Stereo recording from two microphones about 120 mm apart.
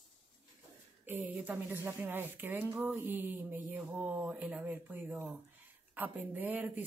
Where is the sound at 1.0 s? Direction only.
15° right (ahead or behind).